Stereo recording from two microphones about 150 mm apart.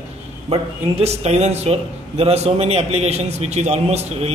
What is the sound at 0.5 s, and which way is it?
A man's voice, 40° right (ahead or behind).